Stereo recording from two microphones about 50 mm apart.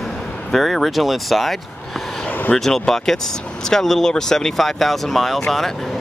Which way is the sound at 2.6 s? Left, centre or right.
Centre.